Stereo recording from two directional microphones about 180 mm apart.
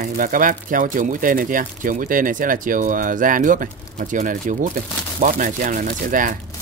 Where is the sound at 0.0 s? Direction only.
50° right (ahead or behind).